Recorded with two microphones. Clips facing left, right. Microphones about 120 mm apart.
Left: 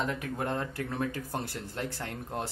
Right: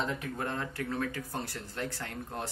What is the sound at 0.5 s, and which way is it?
Speech, 25° left (ahead or behind).